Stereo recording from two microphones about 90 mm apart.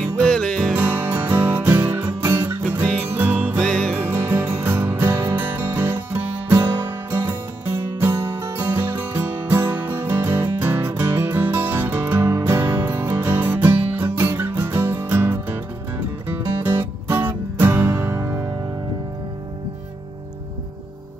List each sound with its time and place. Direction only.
0.2 s music: 10° left (ahead or behind)
0.7 s music: 20° right (ahead or behind)
3.6 s music: 5° left (ahead or behind)
4.0 s music: 25° right (ahead or behind)